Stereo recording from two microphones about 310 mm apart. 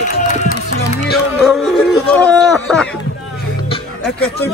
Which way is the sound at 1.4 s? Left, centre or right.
Centre.